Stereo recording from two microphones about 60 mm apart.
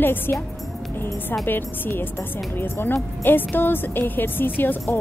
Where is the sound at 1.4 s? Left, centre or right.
Left.